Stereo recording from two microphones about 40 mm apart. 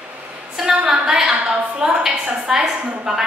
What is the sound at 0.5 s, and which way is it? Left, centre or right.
A woman's voice, centre.